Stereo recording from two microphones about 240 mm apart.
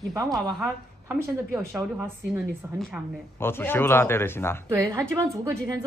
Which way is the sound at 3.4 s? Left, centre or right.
Centre.